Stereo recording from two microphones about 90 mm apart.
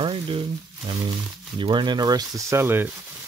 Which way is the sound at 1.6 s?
60° right (ahead or behind).